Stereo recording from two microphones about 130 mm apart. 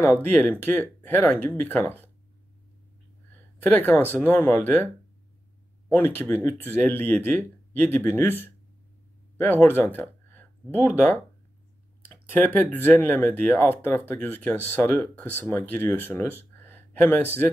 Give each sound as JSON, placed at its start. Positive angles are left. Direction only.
{"t": 0.2, "sound": "speech", "side_deg": 15}
{"t": 3.6, "sound": "speech", "side_deg": 15}